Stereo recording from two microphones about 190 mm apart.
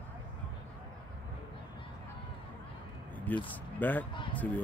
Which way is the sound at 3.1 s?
10° left (ahead or behind).